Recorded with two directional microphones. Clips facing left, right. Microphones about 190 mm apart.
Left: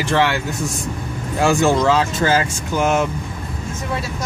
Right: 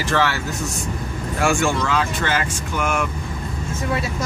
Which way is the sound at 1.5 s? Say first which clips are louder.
Left 7 dB; 35° left (ahead or behind).